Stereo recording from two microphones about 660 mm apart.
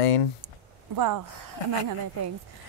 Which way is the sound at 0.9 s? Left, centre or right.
Right.